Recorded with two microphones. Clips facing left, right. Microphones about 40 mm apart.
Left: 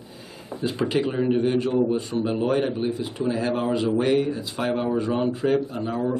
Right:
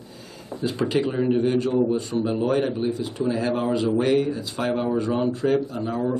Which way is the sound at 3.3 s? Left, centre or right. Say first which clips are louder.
Even; centre.